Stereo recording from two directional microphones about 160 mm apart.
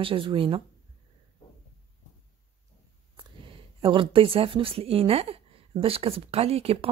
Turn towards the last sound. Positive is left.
turn(degrees=-40)  # may be behind; listen again after turning